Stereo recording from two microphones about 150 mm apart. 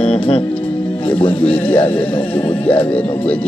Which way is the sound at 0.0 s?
35° left (ahead or behind).